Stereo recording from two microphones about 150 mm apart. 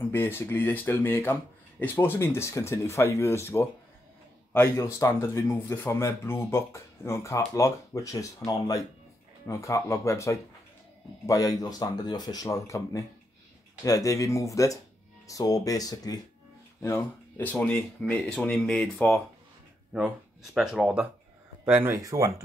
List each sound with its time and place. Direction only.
0.1 s speech: 15° left (ahead or behind)
16.8 s speech: 15° left (ahead or behind); by 22.3 s 20° right (ahead or behind)